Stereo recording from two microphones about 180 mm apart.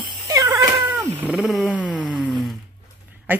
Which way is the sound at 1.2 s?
5° right (ahead or behind).